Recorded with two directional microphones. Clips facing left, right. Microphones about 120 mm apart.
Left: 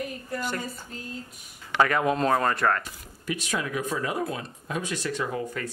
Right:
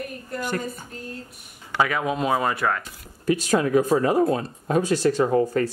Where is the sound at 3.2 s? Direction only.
40° right (ahead or behind).